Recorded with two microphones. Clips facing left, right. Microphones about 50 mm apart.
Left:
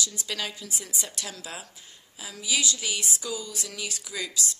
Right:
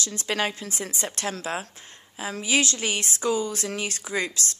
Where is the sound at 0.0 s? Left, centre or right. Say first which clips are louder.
Right 6 dB; right.